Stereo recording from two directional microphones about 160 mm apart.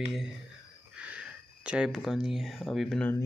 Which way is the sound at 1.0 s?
5° right (ahead or behind).